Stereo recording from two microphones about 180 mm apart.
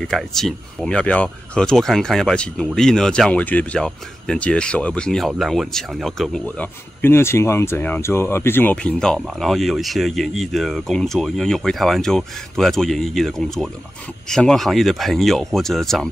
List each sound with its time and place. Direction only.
0.1 s speech: centre (ahead or behind)